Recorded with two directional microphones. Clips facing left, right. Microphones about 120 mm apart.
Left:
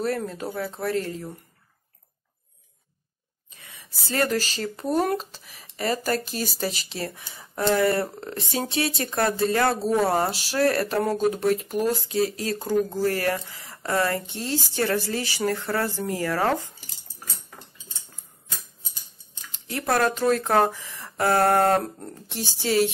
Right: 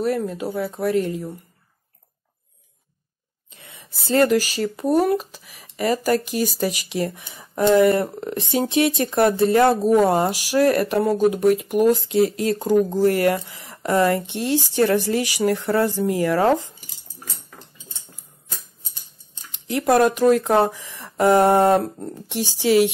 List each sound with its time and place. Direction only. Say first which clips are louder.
0.0 s speech: right 4 dB; 10° right (ahead or behind)
3.4 s a sound: right 3 dB; 25° right (ahead or behind)
4.3 s speech: right 7 dB; 10° right (ahead or behind)
12.1 s speech: right 6 dB; 25° right (ahead or behind)
19.7 s speech: right 6 dB; 20° right (ahead or behind)